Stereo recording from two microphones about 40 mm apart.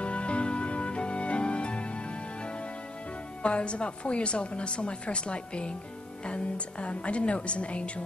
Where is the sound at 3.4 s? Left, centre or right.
Left.